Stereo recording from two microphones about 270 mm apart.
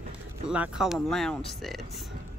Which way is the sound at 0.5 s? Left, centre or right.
Centre.